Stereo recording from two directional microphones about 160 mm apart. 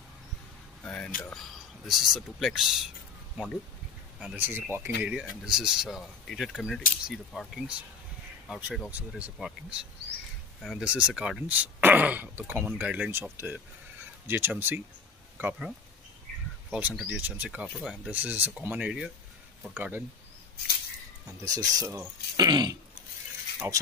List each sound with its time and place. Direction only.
0.8 s speech: 5° left (ahead or behind)
4.2 s speech: 5° right (ahead or behind)
5.0 s speech: 5° right (ahead or behind)
16.7 s speech: 5° right (ahead or behind)
21.5 s speech: 20° right (ahead or behind)